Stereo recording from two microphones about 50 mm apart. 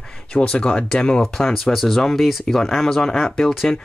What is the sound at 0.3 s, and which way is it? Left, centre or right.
Speech, centre.